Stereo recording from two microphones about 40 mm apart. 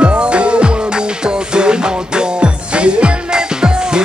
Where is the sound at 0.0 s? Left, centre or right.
Right.